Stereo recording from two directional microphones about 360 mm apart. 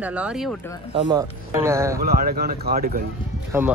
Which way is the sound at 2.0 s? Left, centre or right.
Right.